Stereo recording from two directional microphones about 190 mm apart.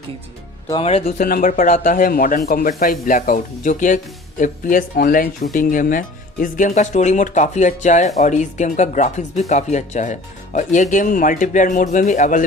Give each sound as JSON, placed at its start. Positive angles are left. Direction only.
{"t": 0.8, "sound": "speech", "side_deg": 35}